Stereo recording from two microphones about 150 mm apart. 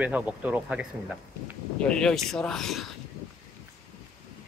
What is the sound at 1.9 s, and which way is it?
Speech, 5° left (ahead or behind).